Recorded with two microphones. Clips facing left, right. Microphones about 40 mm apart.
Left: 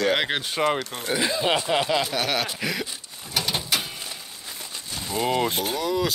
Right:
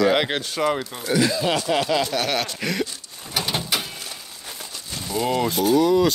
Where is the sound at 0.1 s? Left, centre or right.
Centre.